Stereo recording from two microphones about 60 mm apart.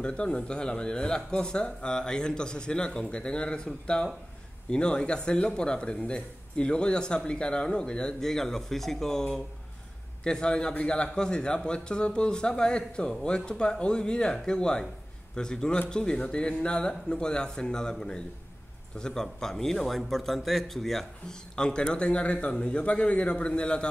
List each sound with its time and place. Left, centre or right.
0.0 s a man's voice: centre